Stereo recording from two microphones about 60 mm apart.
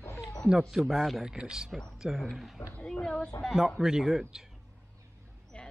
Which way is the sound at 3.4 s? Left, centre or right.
Centre.